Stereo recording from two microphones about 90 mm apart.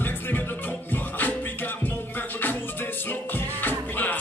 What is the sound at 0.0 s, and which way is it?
Music, 20° left (ahead or behind).